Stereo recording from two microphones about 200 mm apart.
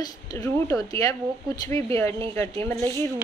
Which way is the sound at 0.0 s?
15° left (ahead or behind).